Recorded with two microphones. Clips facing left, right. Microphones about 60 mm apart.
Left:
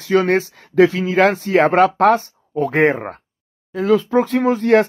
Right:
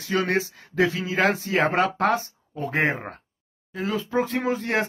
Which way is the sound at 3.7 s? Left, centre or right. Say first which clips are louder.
Left 11 dB; left.